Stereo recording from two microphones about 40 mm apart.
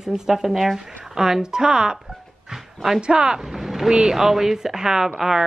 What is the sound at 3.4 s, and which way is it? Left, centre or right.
Speech, centre.